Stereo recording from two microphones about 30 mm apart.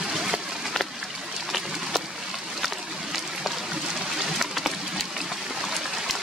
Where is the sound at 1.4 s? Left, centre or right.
Centre.